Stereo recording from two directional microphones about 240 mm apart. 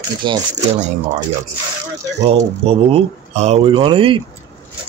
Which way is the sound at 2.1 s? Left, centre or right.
Right.